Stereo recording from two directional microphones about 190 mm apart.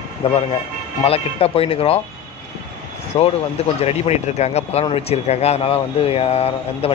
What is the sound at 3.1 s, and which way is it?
Speech, 20° left (ahead or behind).